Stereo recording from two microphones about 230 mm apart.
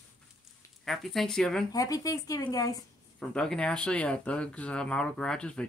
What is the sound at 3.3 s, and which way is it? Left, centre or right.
Speech, centre.